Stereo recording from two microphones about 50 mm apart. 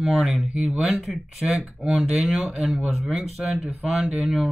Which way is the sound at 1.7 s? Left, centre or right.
Centre.